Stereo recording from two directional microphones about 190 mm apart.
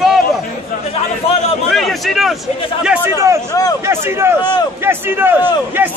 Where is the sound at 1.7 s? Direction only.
Centre (ahead or behind).